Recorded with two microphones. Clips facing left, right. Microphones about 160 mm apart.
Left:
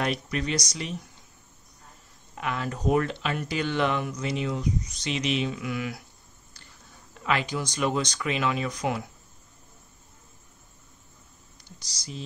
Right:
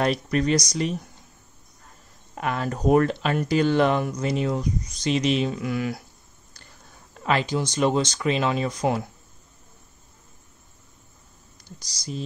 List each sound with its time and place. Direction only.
0.0 s speech: 40° right (ahead or behind)
2.3 s speech: 45° right (ahead or behind)
7.2 s speech: 30° right (ahead or behind)